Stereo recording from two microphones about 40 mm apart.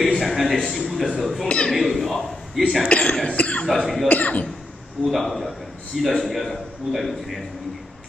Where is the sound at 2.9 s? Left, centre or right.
Left.